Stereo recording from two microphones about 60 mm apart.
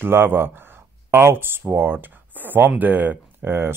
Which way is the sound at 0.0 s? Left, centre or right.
Right.